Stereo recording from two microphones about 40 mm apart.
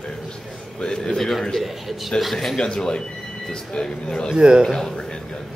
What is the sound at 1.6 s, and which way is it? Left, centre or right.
Speech, centre.